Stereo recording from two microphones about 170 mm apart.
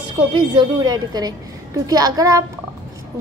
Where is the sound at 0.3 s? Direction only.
25° right (ahead or behind).